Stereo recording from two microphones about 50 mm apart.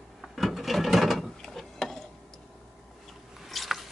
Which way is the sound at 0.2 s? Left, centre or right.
Centre.